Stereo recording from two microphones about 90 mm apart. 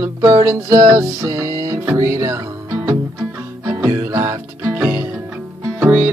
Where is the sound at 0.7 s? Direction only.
50° right (ahead or behind); by 2.4 s 30° right (ahead or behind).